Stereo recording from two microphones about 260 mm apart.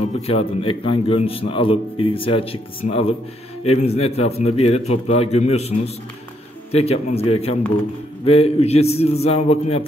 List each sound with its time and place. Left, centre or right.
0.3 s a man's voice: left